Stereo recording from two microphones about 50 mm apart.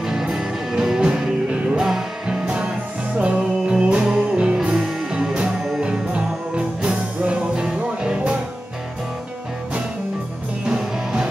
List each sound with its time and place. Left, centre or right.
0.0 s music: centre
10.6 s music: centre